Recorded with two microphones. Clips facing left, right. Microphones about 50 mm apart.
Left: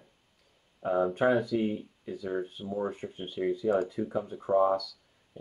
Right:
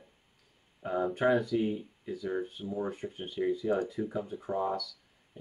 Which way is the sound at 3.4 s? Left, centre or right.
Left.